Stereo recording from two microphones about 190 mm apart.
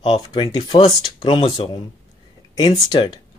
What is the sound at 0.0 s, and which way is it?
Speech, 25° left (ahead or behind).